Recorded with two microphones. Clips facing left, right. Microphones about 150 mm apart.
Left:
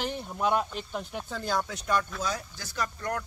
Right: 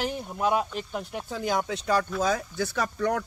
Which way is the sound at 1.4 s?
20° right (ahead or behind).